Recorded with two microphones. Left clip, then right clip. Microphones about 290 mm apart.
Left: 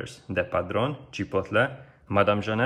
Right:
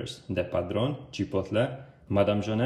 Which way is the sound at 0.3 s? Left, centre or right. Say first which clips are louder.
Left 3 dB; centre.